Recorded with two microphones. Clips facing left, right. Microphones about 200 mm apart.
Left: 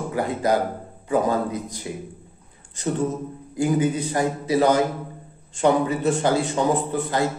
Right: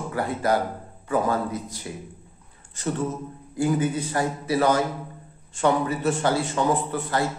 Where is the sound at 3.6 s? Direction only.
15° left (ahead or behind).